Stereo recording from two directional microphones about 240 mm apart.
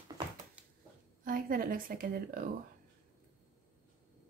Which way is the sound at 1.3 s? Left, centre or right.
Right.